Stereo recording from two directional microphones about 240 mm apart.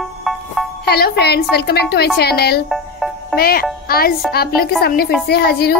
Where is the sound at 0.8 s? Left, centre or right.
Left.